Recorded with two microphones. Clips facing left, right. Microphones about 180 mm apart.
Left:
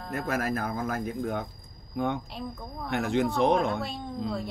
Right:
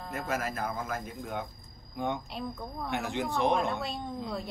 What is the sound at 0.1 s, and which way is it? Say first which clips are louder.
Speech: left 5 dB; 55° left (ahead or behind).